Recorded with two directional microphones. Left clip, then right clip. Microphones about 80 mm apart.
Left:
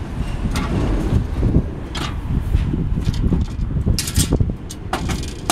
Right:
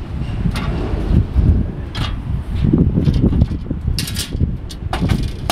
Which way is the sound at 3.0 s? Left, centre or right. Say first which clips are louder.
Right 6 dB; centre.